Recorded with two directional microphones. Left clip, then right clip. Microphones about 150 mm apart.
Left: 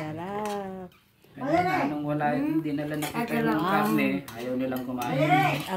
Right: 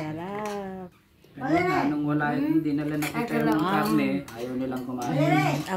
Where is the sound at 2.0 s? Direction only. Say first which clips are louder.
Right 1 dB; 30° left (ahead or behind).